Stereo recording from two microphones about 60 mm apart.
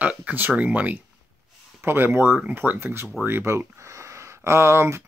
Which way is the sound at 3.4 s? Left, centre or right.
Right.